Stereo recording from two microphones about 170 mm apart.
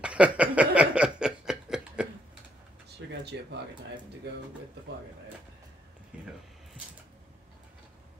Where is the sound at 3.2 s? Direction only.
80° right.